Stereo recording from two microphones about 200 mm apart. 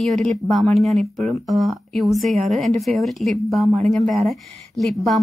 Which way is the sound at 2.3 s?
35° right (ahead or behind).